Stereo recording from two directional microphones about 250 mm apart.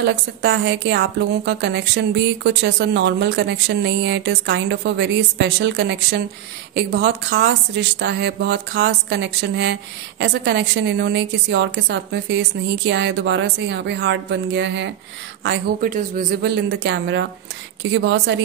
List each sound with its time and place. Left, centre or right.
0.0 s a woman's voice: right